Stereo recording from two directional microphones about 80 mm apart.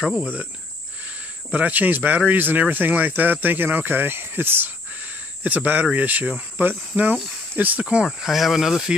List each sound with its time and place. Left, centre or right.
0.0 s cricket: centre
1.5 s speech: right
7.8 s speech: centre